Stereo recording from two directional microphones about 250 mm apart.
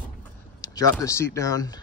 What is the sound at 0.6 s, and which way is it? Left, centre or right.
Speech, centre.